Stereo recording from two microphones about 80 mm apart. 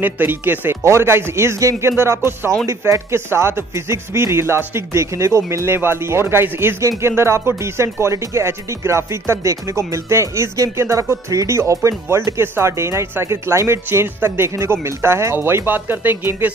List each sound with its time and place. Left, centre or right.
0.0 s speech: right
5.7 s speech: right